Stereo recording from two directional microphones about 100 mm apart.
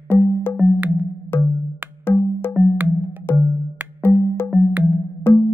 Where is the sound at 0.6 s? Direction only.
20° right (ahead or behind).